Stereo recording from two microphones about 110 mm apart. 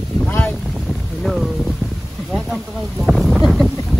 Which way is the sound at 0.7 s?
Centre (ahead or behind).